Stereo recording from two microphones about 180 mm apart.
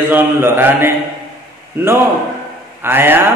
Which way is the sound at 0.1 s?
10° right (ahead or behind).